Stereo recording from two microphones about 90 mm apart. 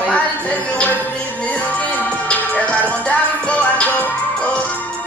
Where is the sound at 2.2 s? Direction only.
15° left (ahead or behind).